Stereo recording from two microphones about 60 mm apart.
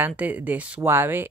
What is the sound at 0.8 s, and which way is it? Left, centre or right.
Speech, right.